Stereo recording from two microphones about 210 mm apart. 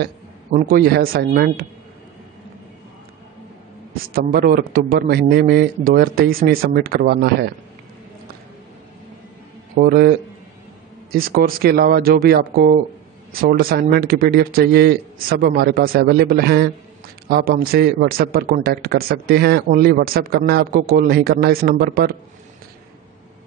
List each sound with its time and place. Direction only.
0.0 s a man's voice: 45° right (ahead or behind)
4.1 s a man's voice: 45° right (ahead or behind)
9.8 s a man's voice: 45° right (ahead or behind)